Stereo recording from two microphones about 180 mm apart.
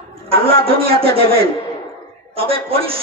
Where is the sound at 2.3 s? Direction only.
30° right (ahead or behind).